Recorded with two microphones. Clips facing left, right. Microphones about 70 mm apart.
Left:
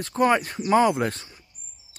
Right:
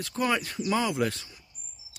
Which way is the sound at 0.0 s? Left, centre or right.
Left.